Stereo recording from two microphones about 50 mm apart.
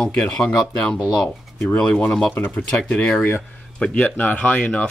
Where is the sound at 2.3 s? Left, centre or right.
Left.